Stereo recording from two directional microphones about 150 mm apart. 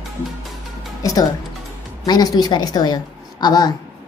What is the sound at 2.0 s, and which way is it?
A woman's voice, 25° left (ahead or behind).